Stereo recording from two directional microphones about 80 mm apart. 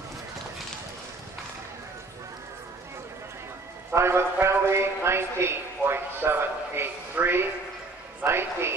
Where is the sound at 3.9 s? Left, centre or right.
Right.